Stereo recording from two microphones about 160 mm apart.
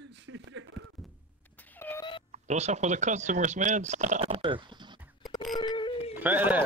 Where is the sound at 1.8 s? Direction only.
15° left (ahead or behind).